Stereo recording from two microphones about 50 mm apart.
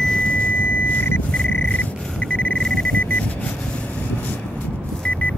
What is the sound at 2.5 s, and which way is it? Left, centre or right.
Alarm clock, centre.